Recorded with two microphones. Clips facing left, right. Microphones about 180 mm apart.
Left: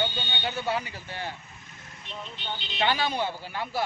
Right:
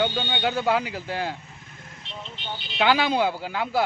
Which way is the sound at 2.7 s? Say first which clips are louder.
Right 6 dB; 90° right.